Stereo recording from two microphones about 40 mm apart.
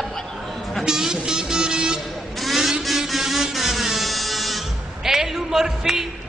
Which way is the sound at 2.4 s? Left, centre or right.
Centre.